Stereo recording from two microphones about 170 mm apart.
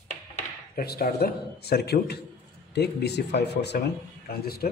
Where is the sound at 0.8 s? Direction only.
60° left (ahead or behind).